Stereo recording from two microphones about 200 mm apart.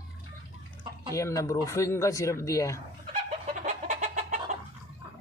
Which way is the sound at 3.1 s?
35° right (ahead or behind).